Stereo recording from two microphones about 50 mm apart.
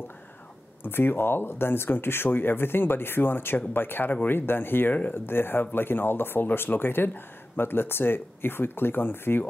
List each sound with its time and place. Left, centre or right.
0.8 s speech: left